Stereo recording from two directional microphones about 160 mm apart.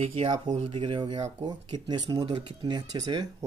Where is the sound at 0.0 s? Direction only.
35° right (ahead or behind).